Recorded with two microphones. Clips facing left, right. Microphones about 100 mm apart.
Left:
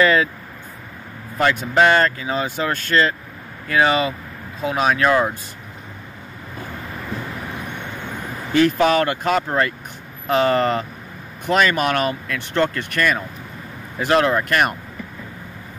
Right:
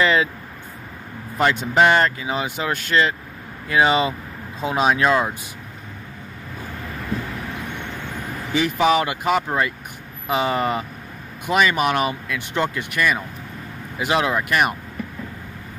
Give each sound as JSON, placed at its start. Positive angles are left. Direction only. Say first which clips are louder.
{"t": 0.0, "sound": "speech", "louder": "left 2 dB", "side_deg": -20}
{"t": 1.4, "sound": "speech", "louder": "left 1 dB", "side_deg": -20}
{"t": 8.5, "sound": "speech", "louder": "left 3 dB", "side_deg": -5}